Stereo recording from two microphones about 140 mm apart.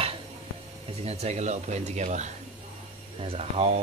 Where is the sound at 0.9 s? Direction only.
50° right (ahead or behind).